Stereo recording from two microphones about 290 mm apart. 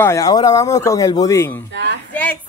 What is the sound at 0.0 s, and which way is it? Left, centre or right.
Speech, centre.